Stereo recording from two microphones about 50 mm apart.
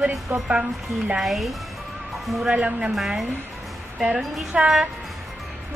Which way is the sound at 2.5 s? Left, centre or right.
Centre.